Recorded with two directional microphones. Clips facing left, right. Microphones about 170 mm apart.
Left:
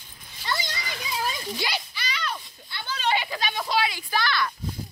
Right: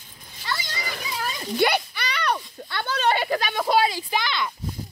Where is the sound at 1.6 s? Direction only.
60° right (ahead or behind).